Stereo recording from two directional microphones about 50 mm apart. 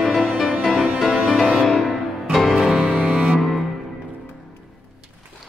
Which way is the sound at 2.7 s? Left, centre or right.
Right.